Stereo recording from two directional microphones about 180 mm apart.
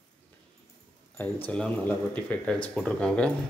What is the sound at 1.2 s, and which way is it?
Speech, 5° left (ahead or behind).